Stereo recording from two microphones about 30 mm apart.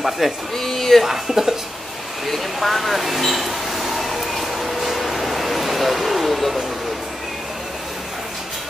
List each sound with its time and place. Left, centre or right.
0.2 s speech: centre
0.6 s speech: centre
1.0 s speech: centre
2.2 s a sound: centre